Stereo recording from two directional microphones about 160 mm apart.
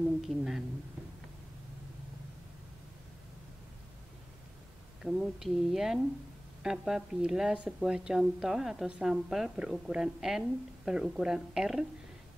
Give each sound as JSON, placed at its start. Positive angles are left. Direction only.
{"t": 0.3, "sound": "speech", "side_deg": 0}
{"t": 5.0, "sound": "speech", "side_deg": 0}